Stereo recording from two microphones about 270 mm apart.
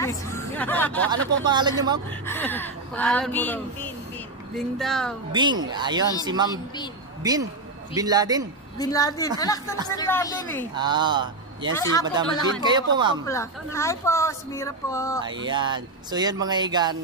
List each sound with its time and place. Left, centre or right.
0.0 s hubbub: centre
1.4 s speech: centre
2.0 s speech: centre
5.3 s speech: centre
7.9 s speech: centre
8.7 s speech: centre
10.8 s speech: centre
11.7 s speech: centre
12.0 s speech: centre
13.3 s speech: centre
15.2 s speech: centre